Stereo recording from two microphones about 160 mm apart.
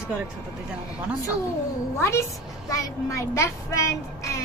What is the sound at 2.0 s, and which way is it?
A woman's voice, 15° left (ahead or behind).